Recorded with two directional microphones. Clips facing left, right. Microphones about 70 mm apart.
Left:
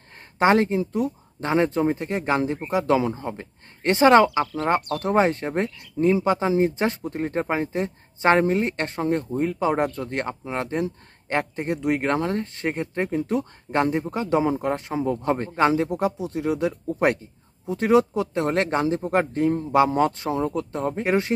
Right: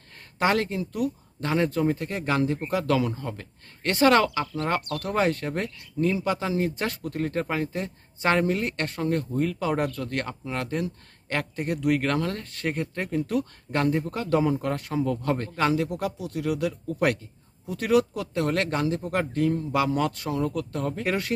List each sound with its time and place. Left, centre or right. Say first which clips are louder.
0.4 s speech: left 5 dB; left